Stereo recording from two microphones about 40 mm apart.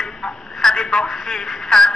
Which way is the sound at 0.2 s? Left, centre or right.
Centre.